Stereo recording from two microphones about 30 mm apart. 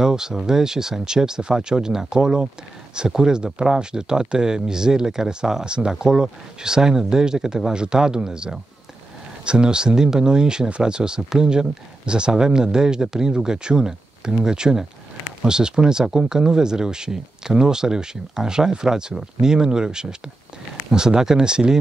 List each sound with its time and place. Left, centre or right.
0.0 s speech: centre